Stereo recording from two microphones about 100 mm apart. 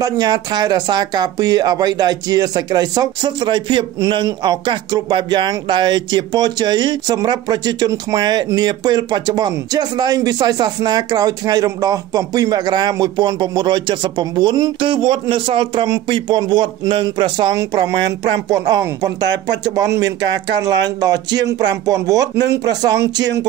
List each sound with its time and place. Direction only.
0.0 s speech: 40° right (ahead or behind)